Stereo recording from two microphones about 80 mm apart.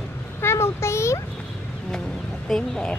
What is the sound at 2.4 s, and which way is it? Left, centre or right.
Speech, centre.